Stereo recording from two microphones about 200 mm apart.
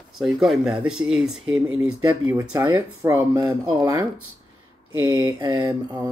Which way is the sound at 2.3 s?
15° right (ahead or behind).